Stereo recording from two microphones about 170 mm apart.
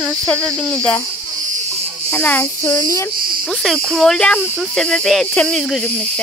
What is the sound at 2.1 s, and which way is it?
A child's voice, 10° left (ahead or behind).